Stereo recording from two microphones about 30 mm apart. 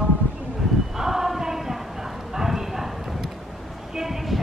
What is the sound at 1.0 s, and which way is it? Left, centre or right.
Choir, centre.